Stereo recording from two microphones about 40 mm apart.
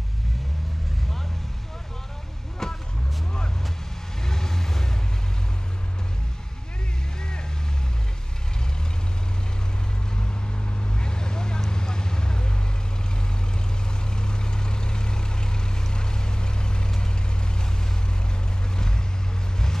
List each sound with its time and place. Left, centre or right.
2.6 s vehicle: centre
4.2 s vehicle: centre
7.2 s vehicle: centre
10.8 s vehicle: left
14.1 s vehicle: centre
18.8 s vehicle: centre